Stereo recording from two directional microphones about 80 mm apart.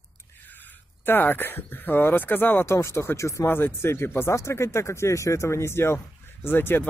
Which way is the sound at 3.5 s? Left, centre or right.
Left.